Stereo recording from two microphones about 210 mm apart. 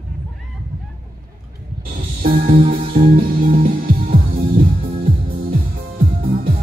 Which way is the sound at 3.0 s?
45° right (ahead or behind).